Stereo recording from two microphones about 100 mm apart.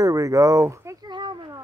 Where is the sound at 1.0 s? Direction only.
50° right (ahead or behind).